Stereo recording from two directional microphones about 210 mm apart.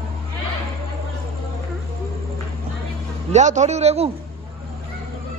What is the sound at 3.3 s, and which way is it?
Speech, 35° right (ahead or behind).